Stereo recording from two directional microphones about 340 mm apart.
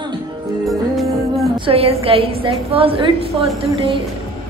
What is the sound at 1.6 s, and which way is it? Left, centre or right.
A woman's voice, centre.